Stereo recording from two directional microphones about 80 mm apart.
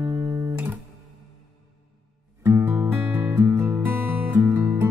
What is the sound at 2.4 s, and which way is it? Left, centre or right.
Music, right.